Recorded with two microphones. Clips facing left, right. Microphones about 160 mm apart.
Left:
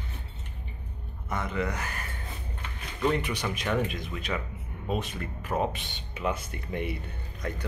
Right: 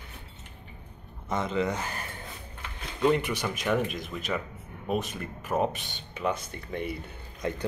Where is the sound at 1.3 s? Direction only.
20° right (ahead or behind).